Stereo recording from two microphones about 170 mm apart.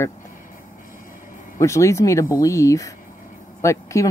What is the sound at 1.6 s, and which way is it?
Speech, 15° left (ahead or behind).